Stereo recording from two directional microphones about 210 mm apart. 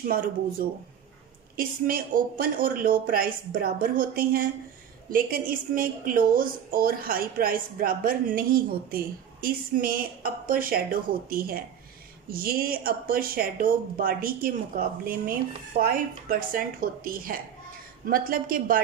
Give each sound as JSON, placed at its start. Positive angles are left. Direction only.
{"t": 0.1, "sound": "a woman's voice", "side_deg": -45}